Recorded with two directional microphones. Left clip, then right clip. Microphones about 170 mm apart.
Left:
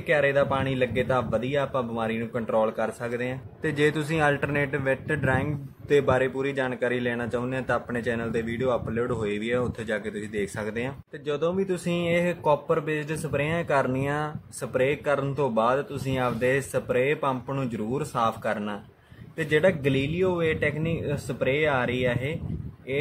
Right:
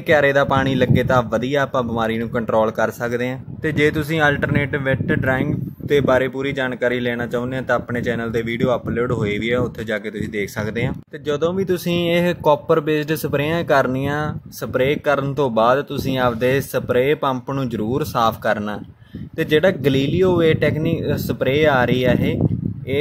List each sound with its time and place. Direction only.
0.1 s a man's voice: 45° right (ahead or behind)
3.6 s a man's voice: 20° right (ahead or behind); by 22.4 s 40° right (ahead or behind)